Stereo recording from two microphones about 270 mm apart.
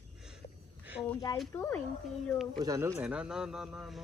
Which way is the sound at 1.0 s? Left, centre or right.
Centre.